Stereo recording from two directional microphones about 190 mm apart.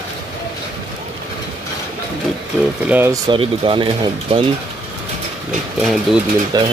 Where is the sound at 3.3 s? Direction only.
25° right (ahead or behind).